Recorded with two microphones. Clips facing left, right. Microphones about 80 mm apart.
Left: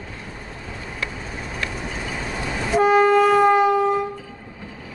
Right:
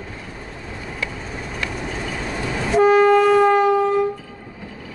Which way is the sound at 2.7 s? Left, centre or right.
Centre.